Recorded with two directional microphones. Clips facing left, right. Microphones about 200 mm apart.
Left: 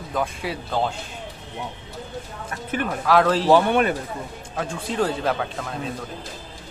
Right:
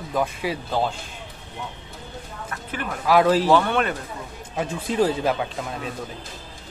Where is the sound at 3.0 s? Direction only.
5° right (ahead or behind).